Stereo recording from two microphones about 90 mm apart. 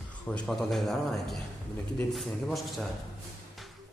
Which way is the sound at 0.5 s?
Centre (ahead or behind).